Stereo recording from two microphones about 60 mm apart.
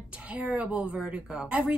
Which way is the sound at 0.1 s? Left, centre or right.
Right.